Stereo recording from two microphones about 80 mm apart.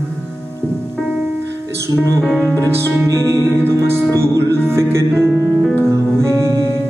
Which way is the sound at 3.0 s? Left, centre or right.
Right.